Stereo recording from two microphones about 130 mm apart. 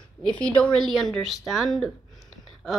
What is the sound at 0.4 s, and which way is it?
A woman's voice, 10° left (ahead or behind).